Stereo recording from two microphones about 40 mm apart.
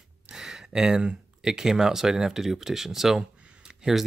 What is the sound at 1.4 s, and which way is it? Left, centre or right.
Speech, centre.